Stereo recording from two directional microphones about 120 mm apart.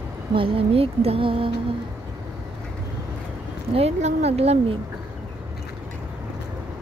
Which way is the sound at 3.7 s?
60° right (ahead or behind).